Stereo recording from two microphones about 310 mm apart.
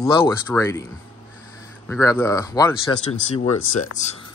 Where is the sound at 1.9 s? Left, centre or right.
Centre.